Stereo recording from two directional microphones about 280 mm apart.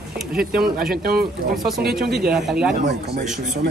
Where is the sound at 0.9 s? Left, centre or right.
Right.